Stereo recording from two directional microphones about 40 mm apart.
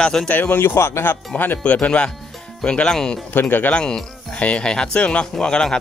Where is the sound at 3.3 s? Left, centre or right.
Left.